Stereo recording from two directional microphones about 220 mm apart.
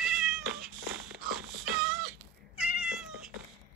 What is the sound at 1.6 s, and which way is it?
Cat, 45° right (ahead or behind).